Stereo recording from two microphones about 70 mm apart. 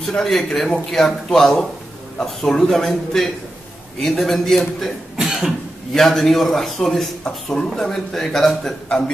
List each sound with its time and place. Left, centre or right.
0.1 s a man's voice: centre
5.1 s cough: centre
5.9 s a man's voice: centre
8.8 s a man's voice: centre